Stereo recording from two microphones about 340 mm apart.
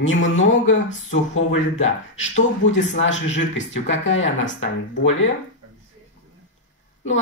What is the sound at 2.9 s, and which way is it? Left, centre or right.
Speech, left.